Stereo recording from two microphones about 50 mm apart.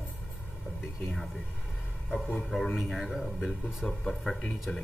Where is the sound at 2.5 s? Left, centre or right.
Centre.